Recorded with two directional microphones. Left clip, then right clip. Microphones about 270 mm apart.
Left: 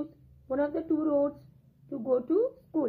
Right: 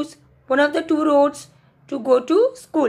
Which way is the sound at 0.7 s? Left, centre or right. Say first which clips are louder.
Right 11 dB; right.